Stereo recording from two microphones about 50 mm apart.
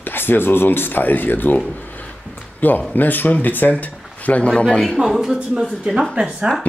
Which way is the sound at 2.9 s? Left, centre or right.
Left.